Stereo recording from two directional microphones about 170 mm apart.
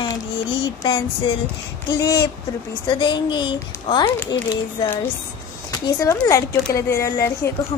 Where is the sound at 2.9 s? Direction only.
30° left (ahead or behind).